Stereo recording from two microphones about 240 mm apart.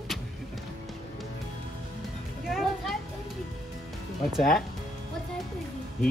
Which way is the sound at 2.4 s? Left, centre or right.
Centre.